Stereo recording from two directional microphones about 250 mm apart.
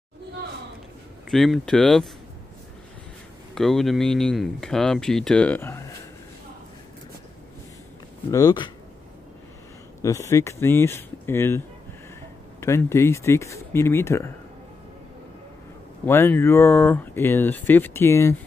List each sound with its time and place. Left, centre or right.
1.3 s speech: centre
3.5 s speech: centre
8.3 s speech: centre
10.0 s speech: centre
16.1 s speech: centre